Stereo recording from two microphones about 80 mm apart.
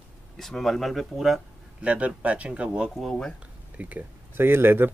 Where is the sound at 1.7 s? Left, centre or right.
Centre.